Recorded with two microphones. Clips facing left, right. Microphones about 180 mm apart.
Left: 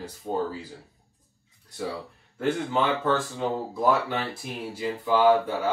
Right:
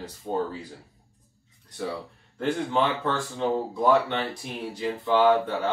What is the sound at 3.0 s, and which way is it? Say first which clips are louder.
Speech: left 1 dB; 5° left (ahead or behind).